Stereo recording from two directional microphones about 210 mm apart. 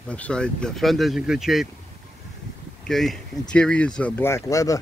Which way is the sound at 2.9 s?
Centre (ahead or behind).